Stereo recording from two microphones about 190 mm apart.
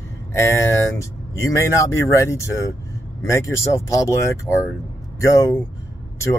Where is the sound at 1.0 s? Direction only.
15° left (ahead or behind).